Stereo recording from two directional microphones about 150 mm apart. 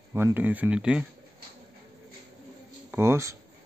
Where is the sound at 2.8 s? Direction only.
15° right (ahead or behind).